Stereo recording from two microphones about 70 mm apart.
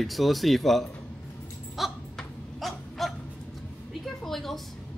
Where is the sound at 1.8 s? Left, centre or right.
Centre.